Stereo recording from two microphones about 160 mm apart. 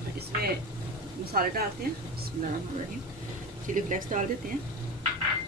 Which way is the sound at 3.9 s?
55° right (ahead or behind).